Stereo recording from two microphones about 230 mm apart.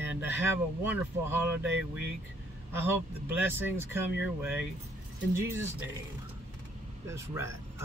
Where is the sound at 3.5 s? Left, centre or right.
Centre.